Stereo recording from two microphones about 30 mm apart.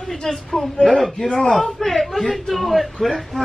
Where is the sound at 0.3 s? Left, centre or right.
Centre.